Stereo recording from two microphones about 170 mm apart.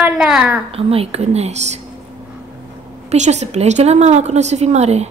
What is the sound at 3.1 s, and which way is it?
A woman's voice, 40° right (ahead or behind).